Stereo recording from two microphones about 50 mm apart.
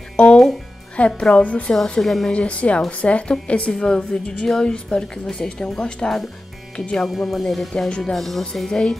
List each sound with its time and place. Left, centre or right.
0.2 s a woman's voice: left
1.8 s speech: centre
2.3 s a woman's voice: left